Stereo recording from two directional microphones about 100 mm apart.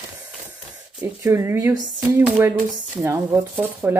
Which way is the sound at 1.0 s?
25° right (ahead or behind).